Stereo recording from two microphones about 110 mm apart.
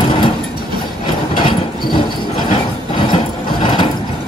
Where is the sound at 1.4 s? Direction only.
50° left (ahead or behind).